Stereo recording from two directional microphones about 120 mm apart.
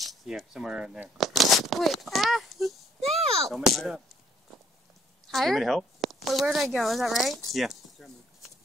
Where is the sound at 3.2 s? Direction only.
55° right (ahead or behind).